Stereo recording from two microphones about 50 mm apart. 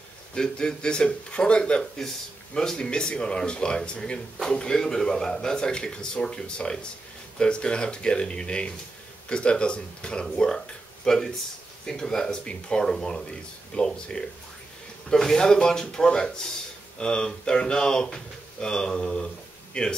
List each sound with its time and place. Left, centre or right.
0.3 s speech: centre